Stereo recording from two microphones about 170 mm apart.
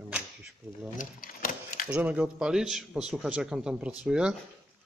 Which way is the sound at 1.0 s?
55° left (ahead or behind).